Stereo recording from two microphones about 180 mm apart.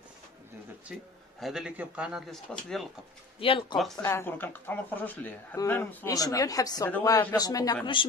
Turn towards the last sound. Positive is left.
turn(degrees=20)  # may be behind; listen again after turning